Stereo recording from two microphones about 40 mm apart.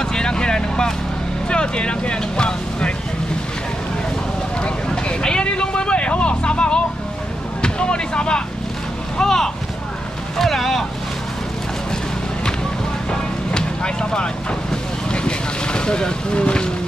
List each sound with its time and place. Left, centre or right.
0.0 s vehicle: centre
1.5 s speech: left
5.2 s vehicle: left
7.6 s speech: left
9.2 s speech: centre
13.5 s vehicle: left